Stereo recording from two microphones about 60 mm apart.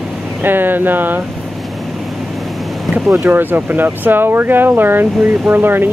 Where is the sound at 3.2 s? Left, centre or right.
Right.